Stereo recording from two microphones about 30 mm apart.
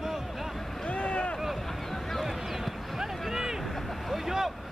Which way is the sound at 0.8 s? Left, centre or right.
Left.